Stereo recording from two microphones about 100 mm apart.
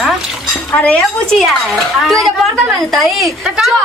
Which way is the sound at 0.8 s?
15° left (ahead or behind).